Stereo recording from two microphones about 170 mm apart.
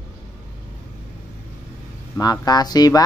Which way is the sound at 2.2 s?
20° left (ahead or behind).